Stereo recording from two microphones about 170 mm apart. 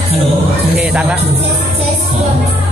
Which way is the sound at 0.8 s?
5° right (ahead or behind).